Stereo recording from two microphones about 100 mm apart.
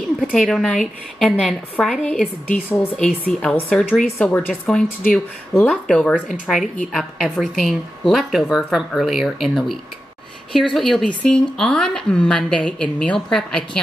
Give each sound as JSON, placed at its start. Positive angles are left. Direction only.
{"t": 0.4, "sound": "a woman's voice", "side_deg": 5}